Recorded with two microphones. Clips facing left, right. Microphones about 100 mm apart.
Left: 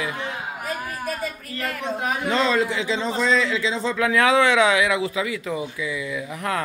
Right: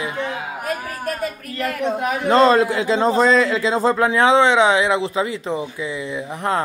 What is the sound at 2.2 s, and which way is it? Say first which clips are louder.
A man's voice: right 8 dB; 45° right (ahead or behind).